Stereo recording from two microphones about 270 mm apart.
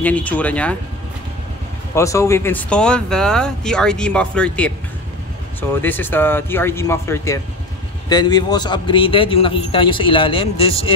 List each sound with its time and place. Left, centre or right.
0.0 s speech: centre
2.0 s a man's voice: centre